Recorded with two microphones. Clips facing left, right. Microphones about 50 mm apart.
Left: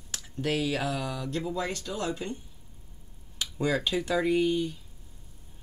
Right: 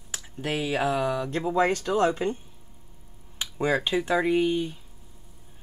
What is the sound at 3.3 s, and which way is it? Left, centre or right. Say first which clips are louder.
Speech: right 3 dB; right.